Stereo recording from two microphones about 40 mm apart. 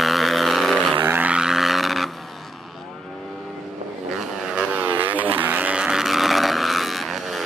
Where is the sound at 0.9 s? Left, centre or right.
Right.